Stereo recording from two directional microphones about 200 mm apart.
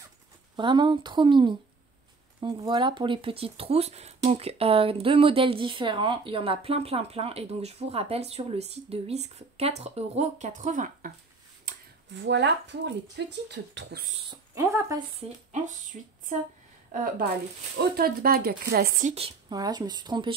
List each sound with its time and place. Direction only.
0.6 s speech: 25° right (ahead or behind); by 11.1 s 40° right (ahead or behind)
12.1 s speech: 60° right (ahead or behind)
14.5 s speech: 15° right (ahead or behind)
16.9 s speech: 45° right (ahead or behind)
19.5 s speech: 20° right (ahead or behind)